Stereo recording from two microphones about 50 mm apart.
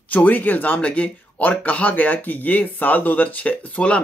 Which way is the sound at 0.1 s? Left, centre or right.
Left.